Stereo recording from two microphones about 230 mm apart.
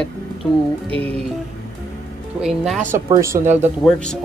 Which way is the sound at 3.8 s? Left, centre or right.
Centre.